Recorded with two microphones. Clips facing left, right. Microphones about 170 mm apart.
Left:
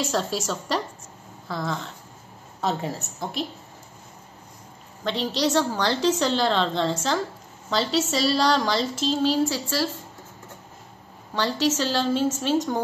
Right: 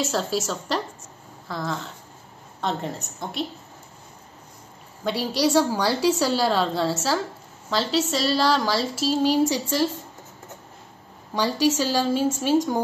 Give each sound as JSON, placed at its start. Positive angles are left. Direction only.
{"t": 0.0, "sound": "a woman's voice", "side_deg": 0}
{"t": 5.0, "sound": "a woman's voice", "side_deg": -10}
{"t": 11.3, "sound": "a woman's voice", "side_deg": -10}